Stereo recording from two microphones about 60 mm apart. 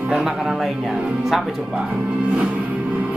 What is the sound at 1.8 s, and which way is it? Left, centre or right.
Speech, right.